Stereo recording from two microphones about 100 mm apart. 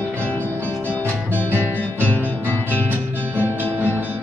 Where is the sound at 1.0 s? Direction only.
20° right (ahead or behind).